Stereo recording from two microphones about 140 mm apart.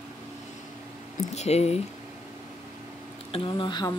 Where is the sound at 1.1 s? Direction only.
50° left (ahead or behind).